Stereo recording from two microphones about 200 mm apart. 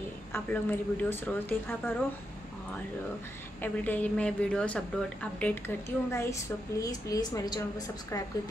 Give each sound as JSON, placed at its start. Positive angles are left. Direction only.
{"t": 0.3, "sound": "a woman's voice", "side_deg": 10}
{"t": 3.6, "sound": "a woman's voice", "side_deg": 10}